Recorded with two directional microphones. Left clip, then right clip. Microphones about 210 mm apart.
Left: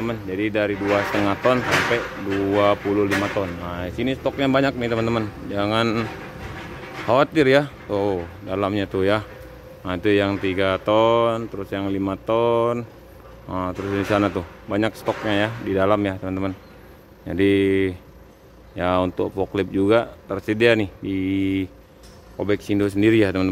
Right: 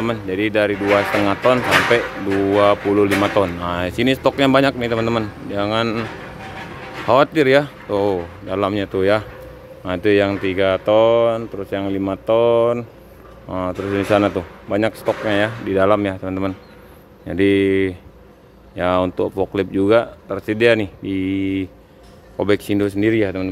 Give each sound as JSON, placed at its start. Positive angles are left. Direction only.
{"t": 0.0, "sound": "a man's voice", "side_deg": -10}
{"t": 3.3, "sound": "speech", "side_deg": -15}
{"t": 4.5, "sound": "a man's voice", "side_deg": -5}
{"t": 7.1, "sound": "a man's voice", "side_deg": 0}
{"t": 22.4, "sound": "speech", "side_deg": -10}
{"t": 22.8, "sound": "speech", "side_deg": 5}